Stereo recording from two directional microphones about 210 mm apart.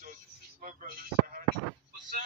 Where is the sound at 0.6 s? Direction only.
40° right (ahead or behind).